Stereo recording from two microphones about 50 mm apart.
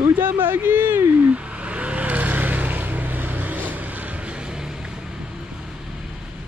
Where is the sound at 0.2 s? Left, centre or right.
Right.